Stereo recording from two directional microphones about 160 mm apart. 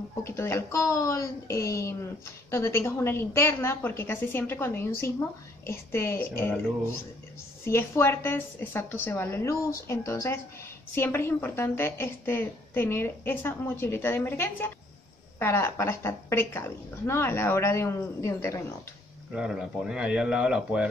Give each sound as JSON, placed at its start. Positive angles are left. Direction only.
{"t": 0.2, "sound": "a woman's voice", "side_deg": 15}
{"t": 7.6, "sound": "a woman's voice", "side_deg": 15}
{"t": 19.3, "sound": "speech", "side_deg": -5}